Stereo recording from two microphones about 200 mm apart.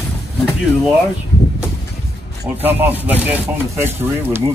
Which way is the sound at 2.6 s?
10° right (ahead or behind).